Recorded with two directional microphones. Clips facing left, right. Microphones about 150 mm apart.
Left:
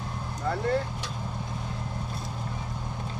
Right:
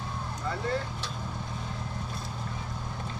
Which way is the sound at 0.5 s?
60° left (ahead or behind).